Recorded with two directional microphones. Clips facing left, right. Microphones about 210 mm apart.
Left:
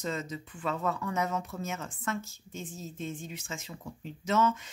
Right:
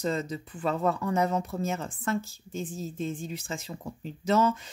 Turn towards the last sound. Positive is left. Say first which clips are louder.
# right 3 dB
turn(degrees=-35)  # may be behind; listen again after turning